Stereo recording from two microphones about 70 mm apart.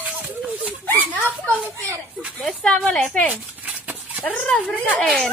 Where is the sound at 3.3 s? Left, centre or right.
Right.